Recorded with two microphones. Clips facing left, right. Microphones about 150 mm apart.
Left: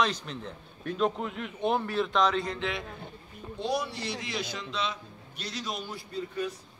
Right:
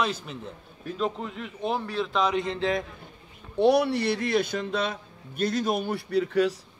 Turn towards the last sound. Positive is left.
turn(degrees=-85)